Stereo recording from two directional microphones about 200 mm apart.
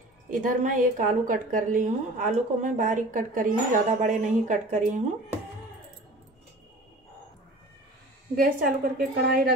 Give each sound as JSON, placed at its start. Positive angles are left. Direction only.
{"t": 0.3, "sound": "a woman's voice", "side_deg": -40}
{"t": 8.4, "sound": "a woman's voice", "side_deg": -45}